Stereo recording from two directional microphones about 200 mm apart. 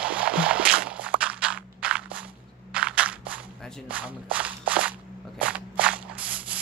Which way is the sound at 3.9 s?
5° right (ahead or behind).